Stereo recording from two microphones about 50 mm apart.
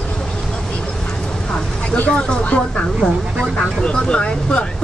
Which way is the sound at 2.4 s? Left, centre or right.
Left.